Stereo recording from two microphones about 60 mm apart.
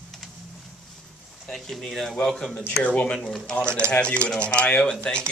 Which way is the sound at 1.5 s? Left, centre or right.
Centre.